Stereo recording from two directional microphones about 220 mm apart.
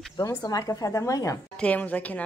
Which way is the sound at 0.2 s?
15° left (ahead or behind).